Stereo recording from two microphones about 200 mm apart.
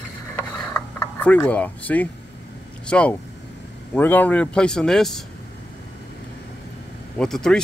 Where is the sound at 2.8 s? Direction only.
5° left (ahead or behind).